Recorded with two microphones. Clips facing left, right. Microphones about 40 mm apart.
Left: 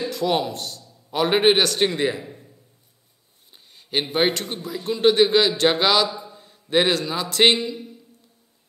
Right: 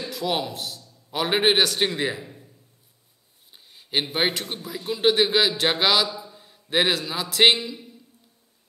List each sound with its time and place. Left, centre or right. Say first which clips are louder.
0.1 s a man's voice: left 2 dB; centre
3.7 s a man's voice: left 3 dB; centre
6.0 s a sound: left 3 dB; centre
6.4 s a man's voice: left 3 dB; centre